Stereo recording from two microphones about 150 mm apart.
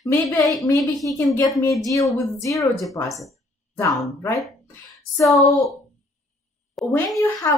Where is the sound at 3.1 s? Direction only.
Centre (ahead or behind).